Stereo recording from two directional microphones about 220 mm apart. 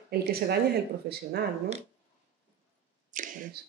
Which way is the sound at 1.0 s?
45° right (ahead or behind).